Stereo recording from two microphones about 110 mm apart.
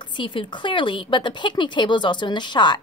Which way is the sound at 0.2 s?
50° left (ahead or behind).